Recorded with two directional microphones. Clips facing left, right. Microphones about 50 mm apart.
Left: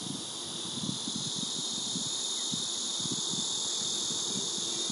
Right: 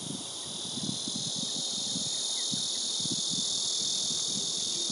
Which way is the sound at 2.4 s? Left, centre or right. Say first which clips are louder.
Right 1 dB; left.